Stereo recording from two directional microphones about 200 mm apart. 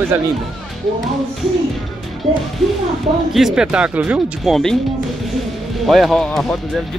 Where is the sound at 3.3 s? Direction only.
Centre (ahead or behind).